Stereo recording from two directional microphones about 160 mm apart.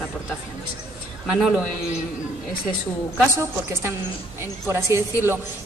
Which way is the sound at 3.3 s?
15° right (ahead or behind).